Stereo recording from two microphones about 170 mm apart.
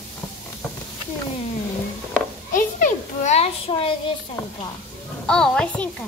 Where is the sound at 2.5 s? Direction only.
50° left (ahead or behind); by 3.9 s 35° left (ahead or behind).